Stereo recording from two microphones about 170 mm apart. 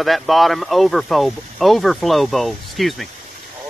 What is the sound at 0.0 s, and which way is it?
Speech, centre (ahead or behind).